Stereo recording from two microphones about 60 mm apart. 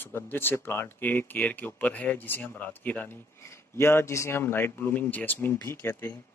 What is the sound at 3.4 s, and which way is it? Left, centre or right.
Speech, left.